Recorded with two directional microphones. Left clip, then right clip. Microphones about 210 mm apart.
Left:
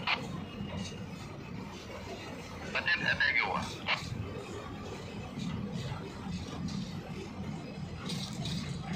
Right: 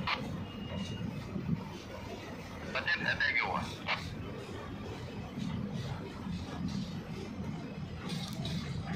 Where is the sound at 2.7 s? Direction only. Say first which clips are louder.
Left 2 dB; 20° left (ahead or behind).